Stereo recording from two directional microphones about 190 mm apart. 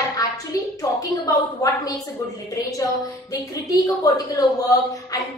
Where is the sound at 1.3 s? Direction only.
20° left (ahead or behind).